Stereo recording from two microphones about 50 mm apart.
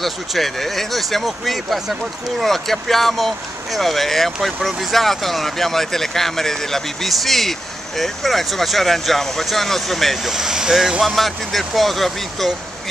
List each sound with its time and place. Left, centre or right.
0.0 s speech: centre
10.3 s speech: centre